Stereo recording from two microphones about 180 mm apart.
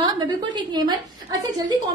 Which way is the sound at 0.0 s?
25° right (ahead or behind).